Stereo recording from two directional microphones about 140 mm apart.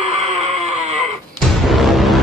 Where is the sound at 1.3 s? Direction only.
Centre (ahead or behind).